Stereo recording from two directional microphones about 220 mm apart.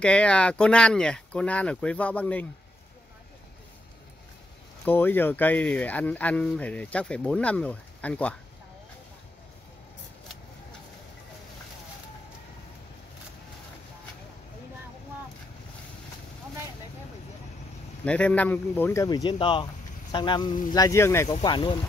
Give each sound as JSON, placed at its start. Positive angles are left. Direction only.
{"t": 0.0, "sound": "speech", "side_deg": 5}
{"t": 4.8, "sound": "speech", "side_deg": 10}
{"t": 18.0, "sound": "speech", "side_deg": 5}